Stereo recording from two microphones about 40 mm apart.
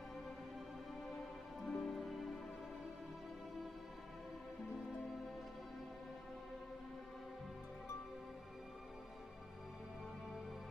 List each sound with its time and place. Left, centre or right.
1.6 s music: centre